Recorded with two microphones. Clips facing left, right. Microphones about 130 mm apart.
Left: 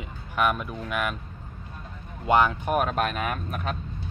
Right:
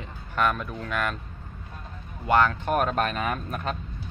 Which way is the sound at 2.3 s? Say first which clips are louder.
Even; 15° left (ahead or behind).